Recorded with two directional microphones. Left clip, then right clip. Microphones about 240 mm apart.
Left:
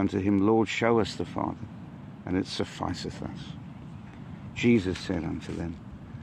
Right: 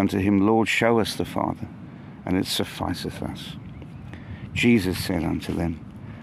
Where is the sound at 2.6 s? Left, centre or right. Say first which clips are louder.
Right 4 dB; right.